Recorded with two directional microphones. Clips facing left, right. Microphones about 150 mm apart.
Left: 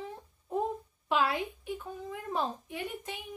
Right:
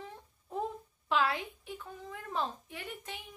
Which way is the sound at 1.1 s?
15° left (ahead or behind).